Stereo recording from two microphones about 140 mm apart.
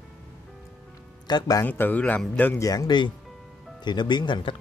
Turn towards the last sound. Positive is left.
turn(degrees=35)  # may be behind; listen again after turning